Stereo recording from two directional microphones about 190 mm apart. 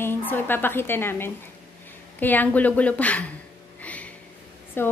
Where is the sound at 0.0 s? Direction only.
10° left (ahead or behind).